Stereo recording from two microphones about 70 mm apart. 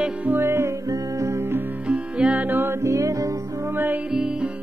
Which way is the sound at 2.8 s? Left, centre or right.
Right.